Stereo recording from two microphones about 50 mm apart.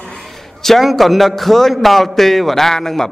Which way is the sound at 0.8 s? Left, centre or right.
Centre.